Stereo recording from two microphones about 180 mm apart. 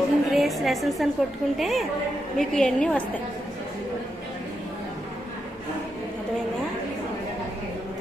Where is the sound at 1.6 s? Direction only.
Centre (ahead or behind).